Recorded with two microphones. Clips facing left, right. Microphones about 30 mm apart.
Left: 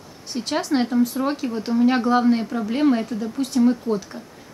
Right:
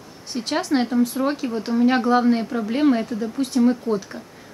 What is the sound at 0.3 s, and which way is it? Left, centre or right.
A woman's voice, centre.